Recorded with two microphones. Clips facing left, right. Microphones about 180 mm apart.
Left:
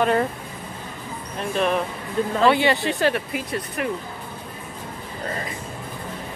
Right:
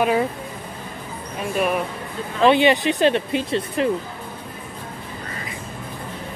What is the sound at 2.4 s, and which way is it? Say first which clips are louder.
Speech: right 4 dB; 20° right (ahead or behind).